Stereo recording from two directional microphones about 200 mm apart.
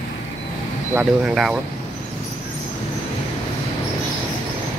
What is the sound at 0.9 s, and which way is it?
Speech, 5° right (ahead or behind).